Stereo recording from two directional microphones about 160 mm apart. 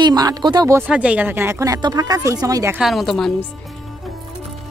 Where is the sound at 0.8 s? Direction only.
10° right (ahead or behind).